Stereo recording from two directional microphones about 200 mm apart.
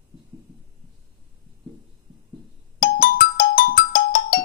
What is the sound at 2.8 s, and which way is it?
Music, 45° left (ahead or behind).